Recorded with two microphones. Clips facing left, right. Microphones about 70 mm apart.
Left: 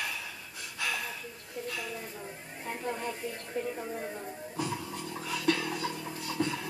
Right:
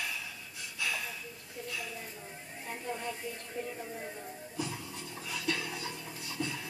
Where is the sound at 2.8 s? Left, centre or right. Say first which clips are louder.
Left 3 dB; left.